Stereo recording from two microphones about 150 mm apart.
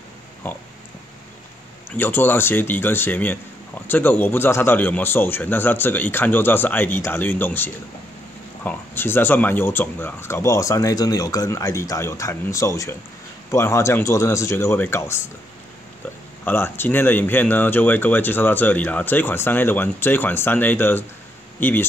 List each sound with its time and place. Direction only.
0.4 s speech: 10° left (ahead or behind)
1.9 s speech: 15° left (ahead or behind)
16.4 s speech: 15° left (ahead or behind)